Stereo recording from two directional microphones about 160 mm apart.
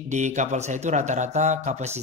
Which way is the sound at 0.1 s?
50° right (ahead or behind).